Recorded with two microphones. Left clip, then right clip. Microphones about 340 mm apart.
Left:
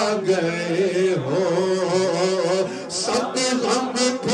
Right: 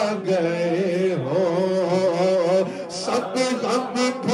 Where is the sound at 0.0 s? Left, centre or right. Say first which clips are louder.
Left 1 dB; centre.